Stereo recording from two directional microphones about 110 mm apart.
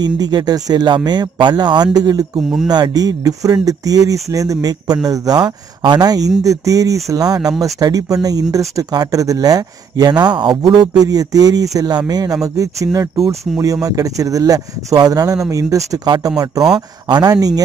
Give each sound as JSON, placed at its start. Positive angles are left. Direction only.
{"t": 0.0, "sound": "speech", "side_deg": -40}